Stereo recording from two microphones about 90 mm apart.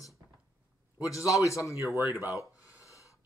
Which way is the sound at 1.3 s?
35° left (ahead or behind).